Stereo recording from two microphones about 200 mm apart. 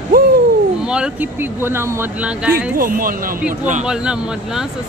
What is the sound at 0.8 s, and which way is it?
Speech, 5° right (ahead or behind).